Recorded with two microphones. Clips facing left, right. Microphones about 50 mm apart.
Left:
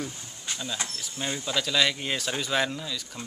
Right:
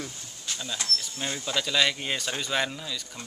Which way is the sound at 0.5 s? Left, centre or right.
Centre.